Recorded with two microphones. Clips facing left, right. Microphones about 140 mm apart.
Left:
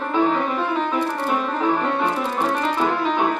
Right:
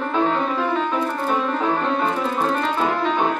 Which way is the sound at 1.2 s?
10° left (ahead or behind).